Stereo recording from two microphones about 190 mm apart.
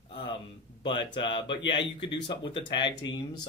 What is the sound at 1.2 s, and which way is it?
Speech, 25° left (ahead or behind).